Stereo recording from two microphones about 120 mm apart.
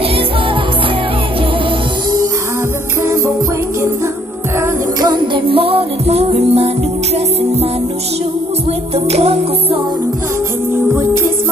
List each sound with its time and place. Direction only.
5.0 s music: 40° right (ahead or behind); by 6.7 s 55° right (ahead or behind)
8.9 s music: 55° right (ahead or behind)